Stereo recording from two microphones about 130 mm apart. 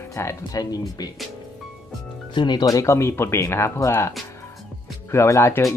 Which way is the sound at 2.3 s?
35° left (ahead or behind).